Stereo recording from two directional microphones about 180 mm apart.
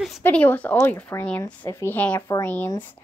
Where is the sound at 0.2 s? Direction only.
10° left (ahead or behind).